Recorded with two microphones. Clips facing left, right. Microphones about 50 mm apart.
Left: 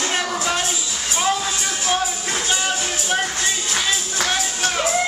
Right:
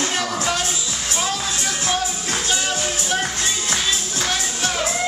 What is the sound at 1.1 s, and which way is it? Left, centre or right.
Music, centre.